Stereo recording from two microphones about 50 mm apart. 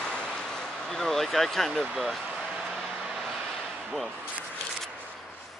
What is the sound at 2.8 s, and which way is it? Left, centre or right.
Vehicle, centre.